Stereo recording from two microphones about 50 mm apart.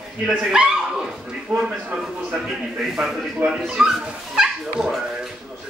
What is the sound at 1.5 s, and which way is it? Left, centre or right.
Speech, right.